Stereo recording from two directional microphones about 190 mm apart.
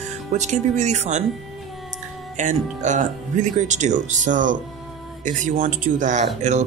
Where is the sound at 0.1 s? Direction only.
40° right (ahead or behind).